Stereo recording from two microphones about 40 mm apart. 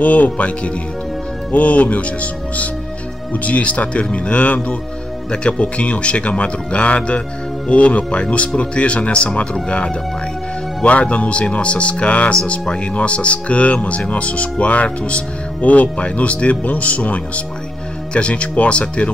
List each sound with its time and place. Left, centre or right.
0.0 s speech: left